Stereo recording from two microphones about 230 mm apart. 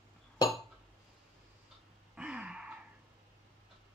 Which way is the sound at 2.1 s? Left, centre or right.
Centre.